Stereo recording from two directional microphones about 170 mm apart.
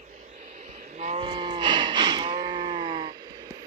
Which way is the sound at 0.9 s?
40° right (ahead or behind).